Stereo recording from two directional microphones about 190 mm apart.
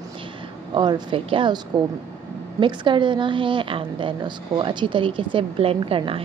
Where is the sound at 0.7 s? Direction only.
25° right (ahead or behind).